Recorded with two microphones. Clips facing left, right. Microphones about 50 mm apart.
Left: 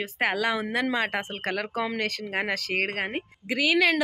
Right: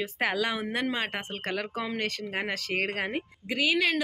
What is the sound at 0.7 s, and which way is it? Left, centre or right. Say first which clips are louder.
Speech: left 4 dB; left.